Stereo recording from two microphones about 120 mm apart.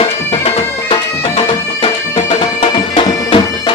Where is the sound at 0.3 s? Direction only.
55° left (ahead or behind).